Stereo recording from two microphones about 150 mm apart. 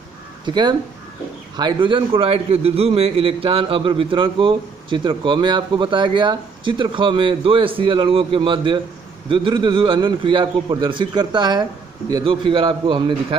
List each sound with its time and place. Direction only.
0.5 s a man's voice: 30° right (ahead or behind)